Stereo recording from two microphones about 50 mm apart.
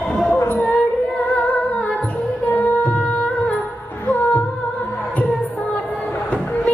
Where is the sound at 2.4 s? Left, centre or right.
Left.